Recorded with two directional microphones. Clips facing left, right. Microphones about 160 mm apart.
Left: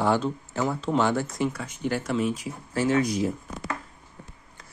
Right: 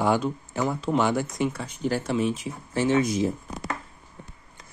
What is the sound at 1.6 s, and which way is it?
Speech, 30° right (ahead or behind).